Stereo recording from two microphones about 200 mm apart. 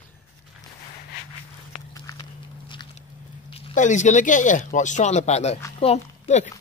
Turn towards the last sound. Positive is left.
turn(degrees=35)  # may be behind; listen again after turning